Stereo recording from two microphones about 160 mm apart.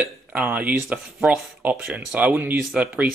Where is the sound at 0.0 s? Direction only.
10° right (ahead or behind).